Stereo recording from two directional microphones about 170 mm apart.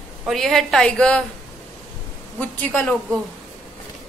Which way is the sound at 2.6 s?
10° left (ahead or behind).